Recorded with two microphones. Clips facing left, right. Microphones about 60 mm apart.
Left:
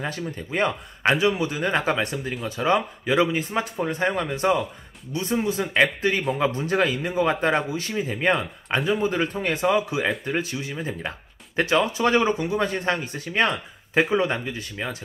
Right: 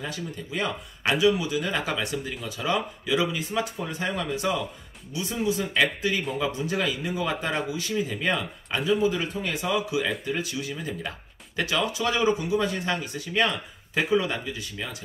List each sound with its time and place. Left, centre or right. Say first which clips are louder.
0.0 s speech: left 4 dB; left